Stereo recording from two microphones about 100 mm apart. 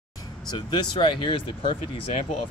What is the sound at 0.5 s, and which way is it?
Speech, 45° left (ahead or behind).